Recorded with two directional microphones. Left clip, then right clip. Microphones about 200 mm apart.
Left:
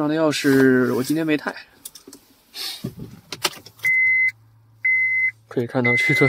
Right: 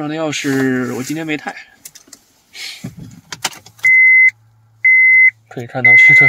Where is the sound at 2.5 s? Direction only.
10° left (ahead or behind).